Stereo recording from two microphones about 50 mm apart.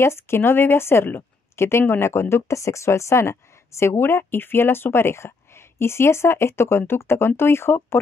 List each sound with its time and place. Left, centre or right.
0.0 s speech: left